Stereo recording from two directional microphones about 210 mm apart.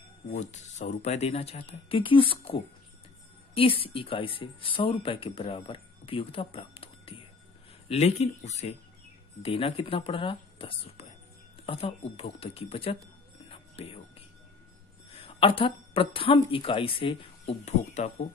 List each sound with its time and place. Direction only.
0.3 s speech: 35° left (ahead or behind)
15.0 s speech: 25° left (ahead or behind)